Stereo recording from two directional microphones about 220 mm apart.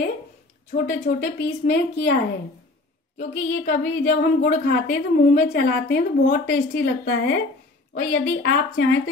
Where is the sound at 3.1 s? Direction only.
50° left (ahead or behind).